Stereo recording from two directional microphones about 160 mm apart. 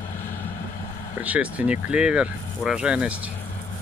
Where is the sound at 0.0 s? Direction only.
50° left (ahead or behind).